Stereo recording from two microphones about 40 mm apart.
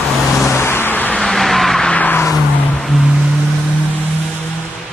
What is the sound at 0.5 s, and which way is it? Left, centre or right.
Vehicle, left.